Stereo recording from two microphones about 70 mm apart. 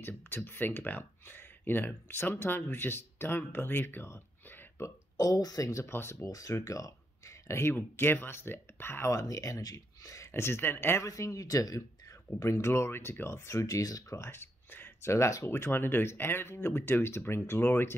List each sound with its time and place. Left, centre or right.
0.0 s speech: left
5.1 s speech: left
5.9 s speech: left
6.2 s speech: left
9.1 s speech: left
11.1 s speech: left
12.4 s speech: left
15.0 s speech: left
15.5 s speech: left